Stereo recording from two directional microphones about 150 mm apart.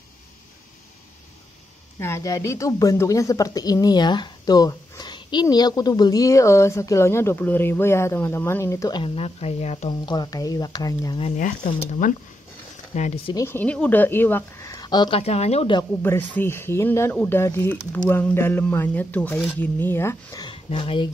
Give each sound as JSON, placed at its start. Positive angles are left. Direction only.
{"t": 2.0, "sound": "a woman's voice", "side_deg": 15}
{"t": 9.0, "sound": "speech", "side_deg": 40}
{"t": 9.8, "sound": "a woman's voice", "side_deg": 30}
{"t": 11.3, "sound": "speech", "side_deg": 55}
{"t": 13.5, "sound": "speech", "side_deg": 10}
{"t": 14.7, "sound": "a woman's voice", "side_deg": 25}
{"t": 15.9, "sound": "speech", "side_deg": 15}
{"t": 20.5, "sound": "speech", "side_deg": 35}